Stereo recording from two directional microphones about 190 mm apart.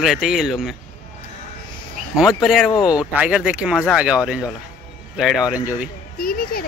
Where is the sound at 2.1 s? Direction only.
Centre (ahead or behind).